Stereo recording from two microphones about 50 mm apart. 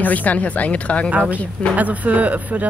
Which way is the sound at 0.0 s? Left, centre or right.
Left.